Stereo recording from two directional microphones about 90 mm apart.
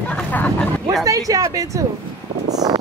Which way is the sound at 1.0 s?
40° right (ahead or behind).